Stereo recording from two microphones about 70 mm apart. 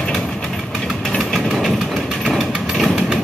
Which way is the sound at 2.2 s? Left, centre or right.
Centre.